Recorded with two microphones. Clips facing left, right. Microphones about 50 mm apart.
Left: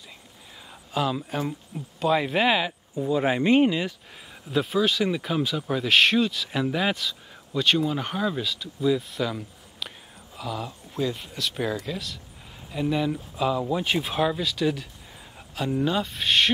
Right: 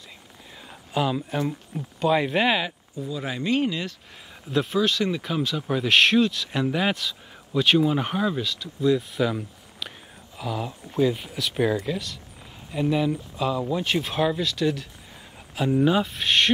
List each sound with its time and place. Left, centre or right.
0.9 s speech: centre
3.0 s speech: left
4.5 s speech: centre
8.4 s speech: centre
15.3 s speech: centre